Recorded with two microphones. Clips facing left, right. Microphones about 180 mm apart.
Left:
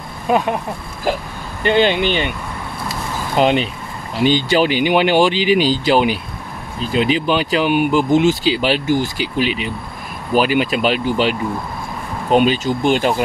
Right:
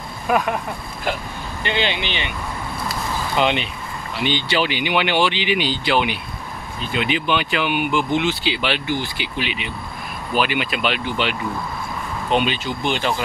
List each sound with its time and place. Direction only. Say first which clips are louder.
0.3 s speech: left 3 dB; 30° left (ahead or behind)
1.6 s speech: left 9 dB; 45° left (ahead or behind)
3.3 s speech: left 6 dB; 40° left (ahead or behind)